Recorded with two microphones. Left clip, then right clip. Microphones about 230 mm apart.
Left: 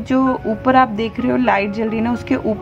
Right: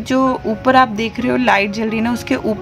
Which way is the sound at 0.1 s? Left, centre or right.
Right.